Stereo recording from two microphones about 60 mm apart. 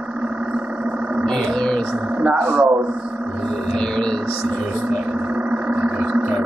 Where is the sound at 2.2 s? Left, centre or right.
Centre.